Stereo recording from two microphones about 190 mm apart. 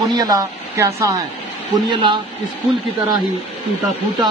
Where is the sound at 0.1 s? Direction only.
20° right (ahead or behind).